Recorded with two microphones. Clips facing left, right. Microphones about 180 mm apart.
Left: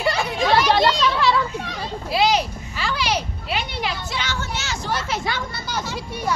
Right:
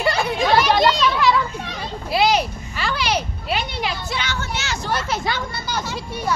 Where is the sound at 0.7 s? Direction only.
30° left (ahead or behind).